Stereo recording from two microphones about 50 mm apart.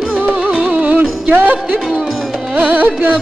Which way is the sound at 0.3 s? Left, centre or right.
Centre.